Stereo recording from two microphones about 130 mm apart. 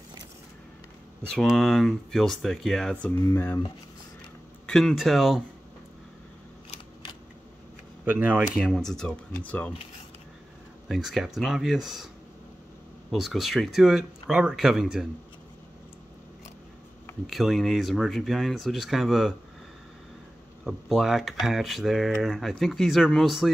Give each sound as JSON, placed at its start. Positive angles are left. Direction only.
{"t": 1.3, "sound": "speech", "side_deg": 0}
{"t": 3.3, "sound": "speech", "side_deg": 20}
{"t": 4.6, "sound": "speech", "side_deg": 5}
{"t": 8.0, "sound": "speech", "side_deg": -15}
{"t": 8.5, "sound": "speech", "side_deg": 0}
{"t": 10.9, "sound": "speech", "side_deg": -5}
{"t": 13.1, "sound": "speech", "side_deg": 0}
{"t": 17.3, "sound": "speech", "side_deg": 0}
{"t": 20.6, "sound": "speech", "side_deg": 0}